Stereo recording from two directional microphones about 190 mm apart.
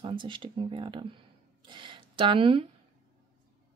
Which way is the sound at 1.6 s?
25° right (ahead or behind).